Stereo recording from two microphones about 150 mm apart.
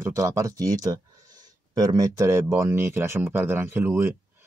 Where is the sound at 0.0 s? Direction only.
20° right (ahead or behind).